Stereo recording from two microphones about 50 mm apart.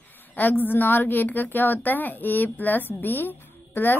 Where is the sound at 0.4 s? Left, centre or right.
Left.